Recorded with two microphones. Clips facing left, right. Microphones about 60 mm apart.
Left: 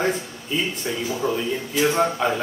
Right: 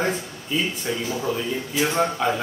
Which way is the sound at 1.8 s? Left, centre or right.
Centre.